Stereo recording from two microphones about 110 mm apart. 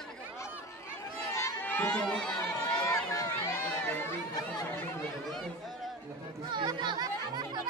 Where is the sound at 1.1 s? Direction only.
25° left (ahead or behind); by 3.1 s 10° left (ahead or behind).